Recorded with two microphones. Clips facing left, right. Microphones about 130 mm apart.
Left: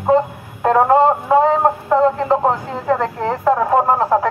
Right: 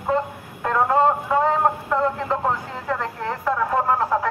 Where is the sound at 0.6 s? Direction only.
35° left (ahead or behind).